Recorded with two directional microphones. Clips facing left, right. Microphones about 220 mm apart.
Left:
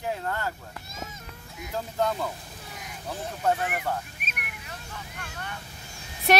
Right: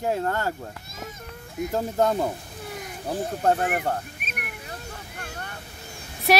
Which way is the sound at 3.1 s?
45° right (ahead or behind).